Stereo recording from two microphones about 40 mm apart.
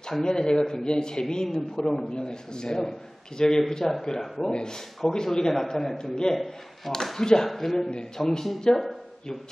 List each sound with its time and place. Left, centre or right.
0.2 s a man's voice: centre
4.4 s a man's voice: left; by 8.8 s centre